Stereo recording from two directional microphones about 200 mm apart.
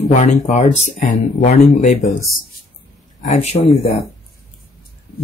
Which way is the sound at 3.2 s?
35° left (ahead or behind).